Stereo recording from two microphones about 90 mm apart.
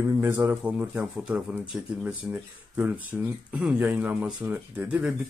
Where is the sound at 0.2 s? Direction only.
25° right (ahead or behind).